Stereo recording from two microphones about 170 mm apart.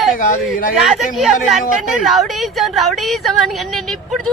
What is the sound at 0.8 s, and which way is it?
A woman's voice, centre (ahead or behind).